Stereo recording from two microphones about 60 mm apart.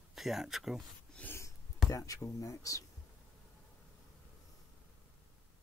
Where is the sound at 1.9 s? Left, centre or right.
Left.